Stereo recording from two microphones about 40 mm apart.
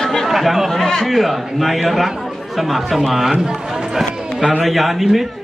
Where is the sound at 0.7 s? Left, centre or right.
Centre.